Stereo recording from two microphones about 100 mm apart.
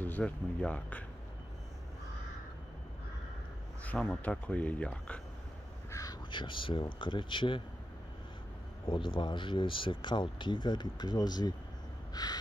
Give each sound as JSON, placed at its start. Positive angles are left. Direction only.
{"t": 0.0, "sound": "speech", "side_deg": 15}
{"t": 3.8, "sound": "speech", "side_deg": 10}
{"t": 5.9, "sound": "crow", "side_deg": 35}
{"t": 6.3, "sound": "speech", "side_deg": 55}
{"t": 8.8, "sound": "speech", "side_deg": 55}
{"t": 12.1, "sound": "a sound", "side_deg": 40}